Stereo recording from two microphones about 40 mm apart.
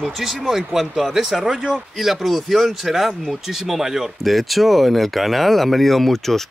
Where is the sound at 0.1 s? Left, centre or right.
Centre.